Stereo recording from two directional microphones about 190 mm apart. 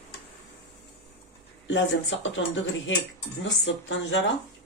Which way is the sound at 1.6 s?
75° left (ahead or behind).